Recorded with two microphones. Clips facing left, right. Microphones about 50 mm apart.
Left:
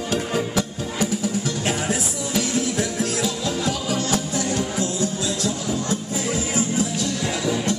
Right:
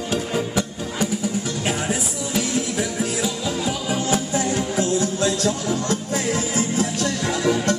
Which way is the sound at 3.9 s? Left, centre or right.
Right.